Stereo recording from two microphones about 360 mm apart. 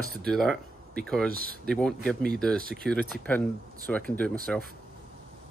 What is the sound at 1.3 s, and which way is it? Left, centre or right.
Speech, right.